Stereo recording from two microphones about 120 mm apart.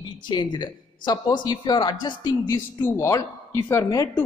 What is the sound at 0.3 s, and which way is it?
Speech, 40° left (ahead or behind).